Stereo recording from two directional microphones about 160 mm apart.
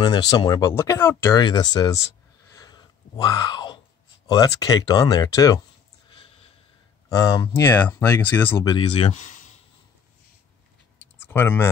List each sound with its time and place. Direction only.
0.0 s speech: 25° left (ahead or behind)
2.5 s a sound: 25° left (ahead or behind)
4.3 s speech: 25° left (ahead or behind)
7.1 s speech: 20° left (ahead or behind)
8.6 s speech: 30° left (ahead or behind); by 9.4 s 45° left (ahead or behind)
11.1 s a sound: 15° left (ahead or behind)